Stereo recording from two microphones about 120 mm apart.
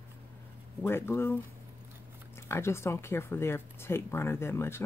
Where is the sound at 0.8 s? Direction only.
20° left (ahead or behind).